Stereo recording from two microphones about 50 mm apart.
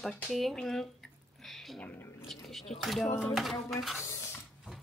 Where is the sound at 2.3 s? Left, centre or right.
Centre.